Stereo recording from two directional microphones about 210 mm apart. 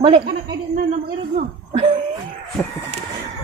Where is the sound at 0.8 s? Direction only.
35° right (ahead or behind).